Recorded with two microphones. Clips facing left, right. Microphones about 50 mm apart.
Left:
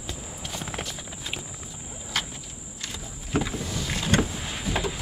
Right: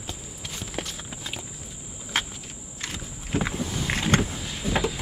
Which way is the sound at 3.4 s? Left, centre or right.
Right.